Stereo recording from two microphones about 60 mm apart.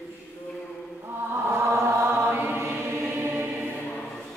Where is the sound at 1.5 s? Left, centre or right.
Right.